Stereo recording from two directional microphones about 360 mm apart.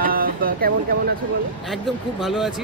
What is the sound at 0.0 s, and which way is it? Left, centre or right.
Vehicle, right.